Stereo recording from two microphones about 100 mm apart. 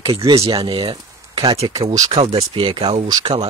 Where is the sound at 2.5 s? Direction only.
65° right (ahead or behind).